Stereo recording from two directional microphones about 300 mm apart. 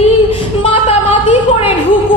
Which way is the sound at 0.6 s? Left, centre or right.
Centre.